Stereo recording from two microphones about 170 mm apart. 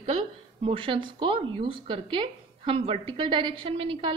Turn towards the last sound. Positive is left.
turn(degrees=-30)  # may be behind; listen again after turning